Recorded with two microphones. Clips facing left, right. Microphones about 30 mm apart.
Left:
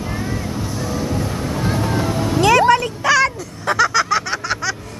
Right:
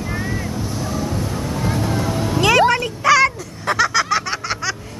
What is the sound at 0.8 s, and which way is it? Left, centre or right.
Vehicle, centre.